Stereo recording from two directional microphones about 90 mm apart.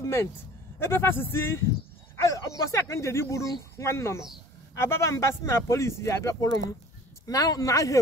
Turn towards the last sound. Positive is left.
turn(degrees=35)  # may be behind; listen again after turning